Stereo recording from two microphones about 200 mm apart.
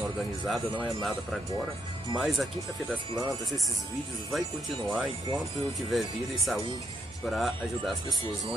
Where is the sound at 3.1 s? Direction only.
15° right (ahead or behind).